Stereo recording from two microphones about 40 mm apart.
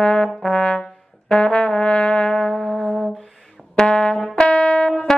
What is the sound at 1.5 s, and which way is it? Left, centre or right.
Music, left.